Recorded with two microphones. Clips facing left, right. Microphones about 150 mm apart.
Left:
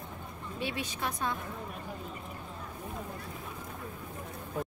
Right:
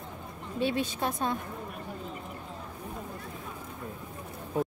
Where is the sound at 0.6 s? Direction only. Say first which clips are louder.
Right 7 dB; 30° right (ahead or behind).